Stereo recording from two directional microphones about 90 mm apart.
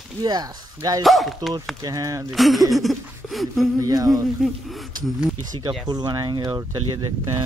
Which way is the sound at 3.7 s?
45° right (ahead or behind).